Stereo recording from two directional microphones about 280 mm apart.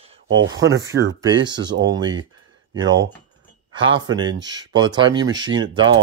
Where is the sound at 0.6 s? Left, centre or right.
Right.